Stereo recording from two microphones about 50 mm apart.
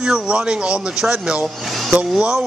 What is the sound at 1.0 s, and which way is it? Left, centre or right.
Speech, centre.